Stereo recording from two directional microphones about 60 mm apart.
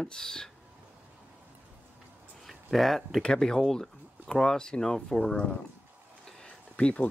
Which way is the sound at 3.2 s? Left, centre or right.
Centre.